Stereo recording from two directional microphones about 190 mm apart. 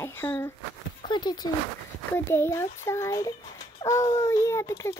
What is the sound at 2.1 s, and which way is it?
Speech, 10° left (ahead or behind).